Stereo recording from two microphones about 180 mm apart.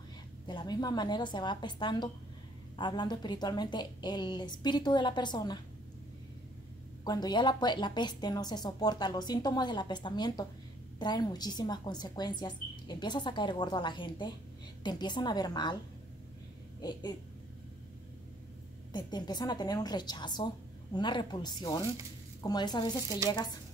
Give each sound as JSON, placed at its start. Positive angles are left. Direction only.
{"t": 0.5, "sound": "a woman's voice", "side_deg": 25}
{"t": 7.1, "sound": "a woman's voice", "side_deg": 20}
{"t": 18.9, "sound": "a woman's voice", "side_deg": 25}